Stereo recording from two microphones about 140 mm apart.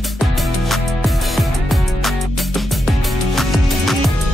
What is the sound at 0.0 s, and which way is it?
Music, centre (ahead or behind).